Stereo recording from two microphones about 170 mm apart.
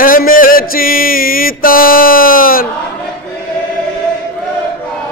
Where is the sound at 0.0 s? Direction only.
55° left (ahead or behind).